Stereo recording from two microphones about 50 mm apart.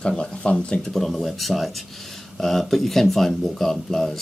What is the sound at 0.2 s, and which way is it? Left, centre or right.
Speech, centre.